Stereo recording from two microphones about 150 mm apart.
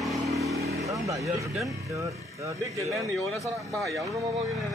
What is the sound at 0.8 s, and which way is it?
Speech, 20° right (ahead or behind).